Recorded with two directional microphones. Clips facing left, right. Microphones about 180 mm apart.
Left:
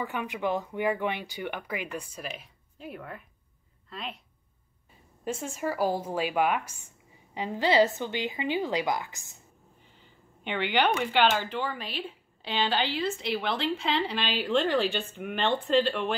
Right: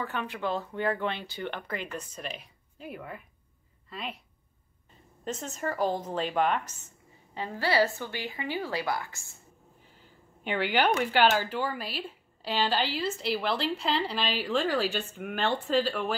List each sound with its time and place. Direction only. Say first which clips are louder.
0.0 s a woman's voice: left 2 dB; 15° left (ahead or behind); by 4.2 s centre (ahead or behind)
5.2 s speech: left 2 dB; 10° left (ahead or behind)
10.4 s a woman's voice: even; 5° right (ahead or behind)